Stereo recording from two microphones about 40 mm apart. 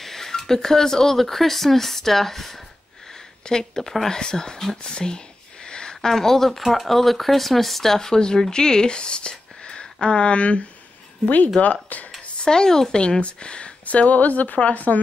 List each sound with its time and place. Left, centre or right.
0.0 s speech: centre
4.9 s a sound: centre
6.0 s a woman's voice: centre; by 12.1 s left
12.4 s speech: centre
13.2 s speech: left
13.8 s a woman's voice: left